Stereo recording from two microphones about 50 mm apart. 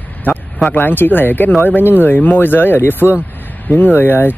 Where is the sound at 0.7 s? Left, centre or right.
Left.